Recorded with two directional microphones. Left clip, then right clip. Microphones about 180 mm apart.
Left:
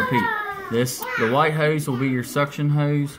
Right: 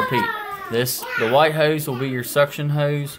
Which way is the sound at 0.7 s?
35° right (ahead or behind).